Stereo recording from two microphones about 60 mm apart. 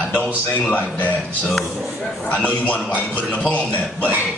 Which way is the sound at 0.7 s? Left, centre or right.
Left.